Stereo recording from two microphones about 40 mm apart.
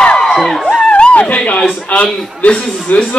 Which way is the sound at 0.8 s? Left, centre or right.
Left.